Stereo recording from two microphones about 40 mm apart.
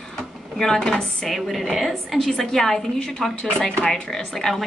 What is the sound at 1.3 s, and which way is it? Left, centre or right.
Speech, centre.